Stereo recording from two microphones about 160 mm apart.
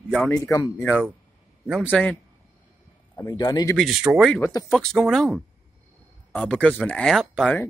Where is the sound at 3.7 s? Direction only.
Centre (ahead or behind).